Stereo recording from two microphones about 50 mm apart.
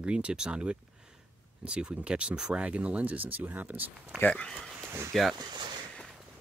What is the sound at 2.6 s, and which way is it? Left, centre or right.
Speech, right.